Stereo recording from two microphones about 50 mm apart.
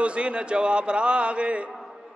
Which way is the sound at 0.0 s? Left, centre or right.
Right.